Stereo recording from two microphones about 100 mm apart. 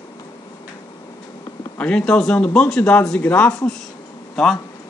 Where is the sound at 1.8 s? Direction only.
10° left (ahead or behind).